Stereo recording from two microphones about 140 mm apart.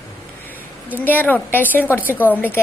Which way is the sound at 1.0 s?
15° left (ahead or behind).